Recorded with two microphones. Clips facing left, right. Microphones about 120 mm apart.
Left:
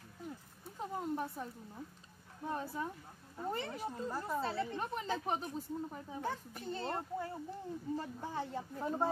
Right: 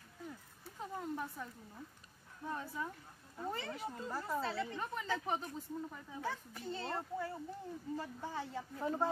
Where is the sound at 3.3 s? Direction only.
15° left (ahead or behind).